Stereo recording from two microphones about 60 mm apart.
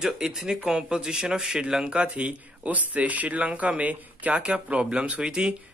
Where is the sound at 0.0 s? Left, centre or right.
Centre.